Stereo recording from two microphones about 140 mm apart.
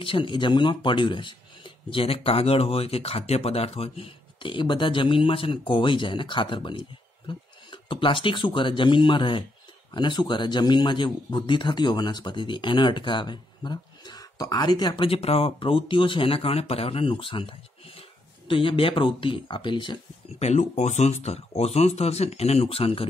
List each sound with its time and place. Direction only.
0.0 s speech: 35° left (ahead or behind)
20.3 s speech: 55° left (ahead or behind)